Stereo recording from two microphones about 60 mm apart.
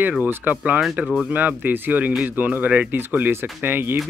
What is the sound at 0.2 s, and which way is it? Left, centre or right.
Speech, right.